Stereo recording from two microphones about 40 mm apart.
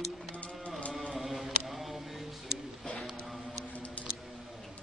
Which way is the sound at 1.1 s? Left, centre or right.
Centre.